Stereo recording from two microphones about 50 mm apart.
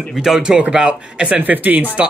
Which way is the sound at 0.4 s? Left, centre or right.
Right.